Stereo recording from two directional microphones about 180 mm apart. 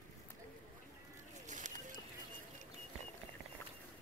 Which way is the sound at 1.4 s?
45° right (ahead or behind).